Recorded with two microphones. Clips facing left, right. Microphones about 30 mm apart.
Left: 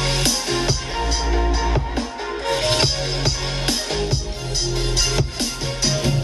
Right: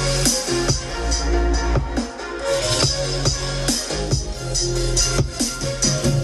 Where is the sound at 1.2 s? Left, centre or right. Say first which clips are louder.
Even; centre.